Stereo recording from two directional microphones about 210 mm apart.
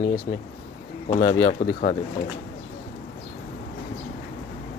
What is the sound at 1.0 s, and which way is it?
Speech, 25° left (ahead or behind).